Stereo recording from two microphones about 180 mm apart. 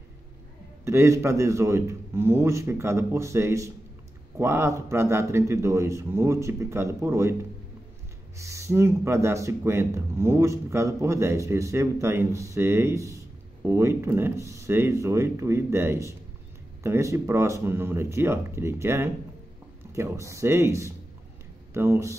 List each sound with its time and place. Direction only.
0.8 s speech: 15° right (ahead or behind)
8.4 s speech: 15° right (ahead or behind)